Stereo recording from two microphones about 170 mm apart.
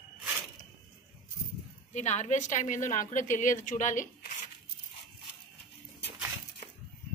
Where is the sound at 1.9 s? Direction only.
45° left (ahead or behind).